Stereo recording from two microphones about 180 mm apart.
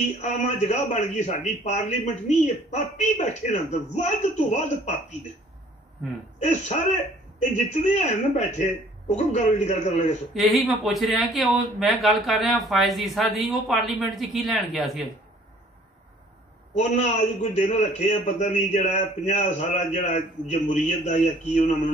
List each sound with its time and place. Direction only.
0.2 s a man's voice: 40° left (ahead or behind)
6.4 s a man's voice: 40° left (ahead or behind)
10.3 s speech: centre (ahead or behind)
16.7 s a man's voice: 40° left (ahead or behind)